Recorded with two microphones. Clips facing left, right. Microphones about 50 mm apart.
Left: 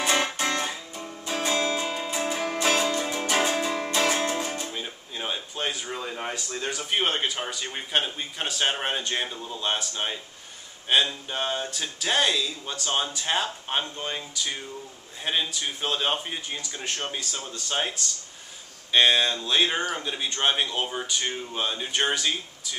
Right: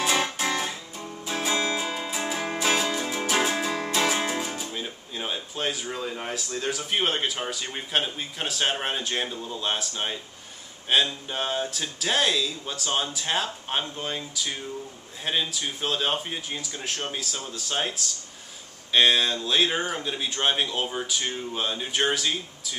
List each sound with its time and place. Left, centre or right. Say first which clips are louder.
0.0 s guitar: even; centre
0.7 s music: even; centre
4.0 s speech: left 1 dB; centre